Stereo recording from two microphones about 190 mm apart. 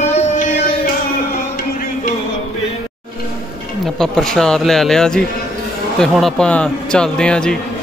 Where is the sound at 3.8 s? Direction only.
Centre (ahead or behind).